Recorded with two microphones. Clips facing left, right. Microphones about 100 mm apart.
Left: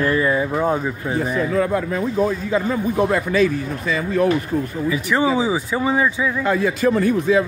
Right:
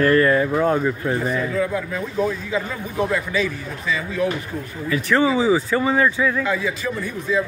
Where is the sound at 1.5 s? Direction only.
50° left (ahead or behind).